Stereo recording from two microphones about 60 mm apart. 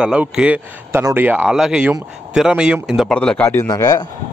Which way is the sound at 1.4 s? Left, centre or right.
Centre.